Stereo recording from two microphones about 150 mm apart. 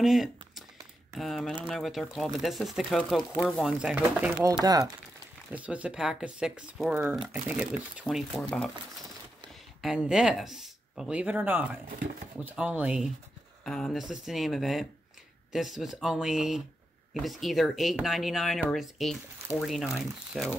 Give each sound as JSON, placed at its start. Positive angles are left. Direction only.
{"t": 0.0, "sound": "a sound", "side_deg": 0}
{"t": 1.1, "sound": "speech", "side_deg": 0}
{"t": 4.5, "sound": "speech", "side_deg": -25}
{"t": 5.5, "sound": "speech", "side_deg": -10}
{"t": 9.8, "sound": "speech", "side_deg": -5}
{"t": 13.7, "sound": "speech", "side_deg": 5}